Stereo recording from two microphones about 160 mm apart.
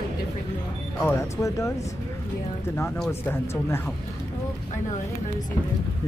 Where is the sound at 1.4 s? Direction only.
20° left (ahead or behind).